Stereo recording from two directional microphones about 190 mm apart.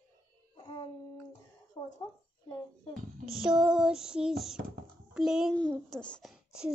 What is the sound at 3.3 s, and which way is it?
A child's voice, centre (ahead or behind).